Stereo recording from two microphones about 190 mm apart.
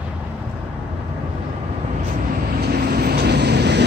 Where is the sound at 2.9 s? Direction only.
55° right (ahead or behind).